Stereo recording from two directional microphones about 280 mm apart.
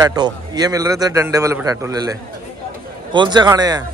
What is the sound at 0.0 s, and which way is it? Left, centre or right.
A man's voice, centre.